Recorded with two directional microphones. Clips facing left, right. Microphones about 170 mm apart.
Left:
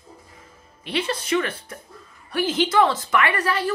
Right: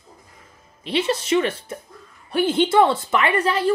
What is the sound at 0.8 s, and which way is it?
A woman's voice, 25° right (ahead or behind).